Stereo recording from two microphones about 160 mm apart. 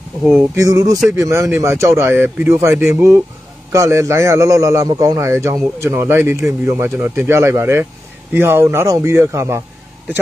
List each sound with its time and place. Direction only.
0.2 s a man's voice: 10° right (ahead or behind)